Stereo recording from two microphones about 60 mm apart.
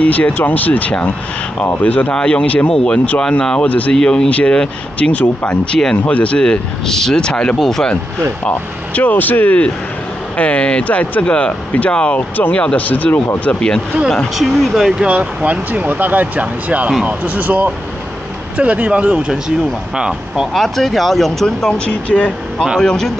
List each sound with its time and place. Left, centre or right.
0.0 s speech: left
2.7 s speech: centre
3.9 s speech: centre
5.8 s speech: centre
8.5 s speech: left
13.4 s speech: centre
14.3 s speech: centre
15.0 s speech: right
20.5 s speech: centre